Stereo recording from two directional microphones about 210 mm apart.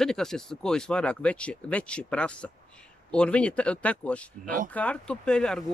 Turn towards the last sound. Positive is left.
turn(degrees=5)  # may be behind; listen again after turning